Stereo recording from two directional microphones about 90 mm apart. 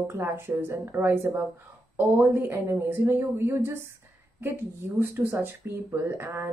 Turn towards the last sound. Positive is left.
turn(degrees=-25)  # may be behind; listen again after turning